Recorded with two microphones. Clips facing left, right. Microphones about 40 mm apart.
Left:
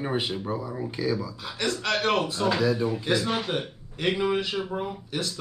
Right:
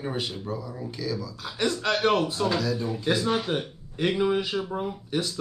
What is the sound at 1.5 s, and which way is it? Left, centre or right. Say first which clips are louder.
Speech: right 2 dB; centre.